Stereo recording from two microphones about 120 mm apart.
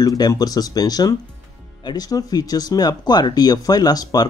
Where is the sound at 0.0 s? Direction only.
30° left (ahead or behind).